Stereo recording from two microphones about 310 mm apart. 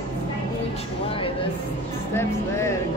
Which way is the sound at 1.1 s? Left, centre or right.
Centre.